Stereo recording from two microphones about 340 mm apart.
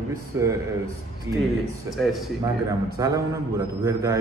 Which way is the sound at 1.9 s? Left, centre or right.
Centre.